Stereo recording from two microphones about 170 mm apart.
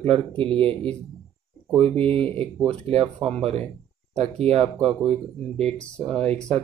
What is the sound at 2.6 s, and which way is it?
Speech, 35° right (ahead or behind).